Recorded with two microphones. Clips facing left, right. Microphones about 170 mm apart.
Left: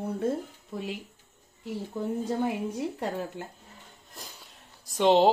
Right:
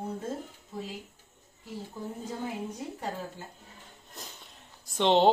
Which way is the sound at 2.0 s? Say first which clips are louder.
Left 9 dB; 70° left (ahead or behind).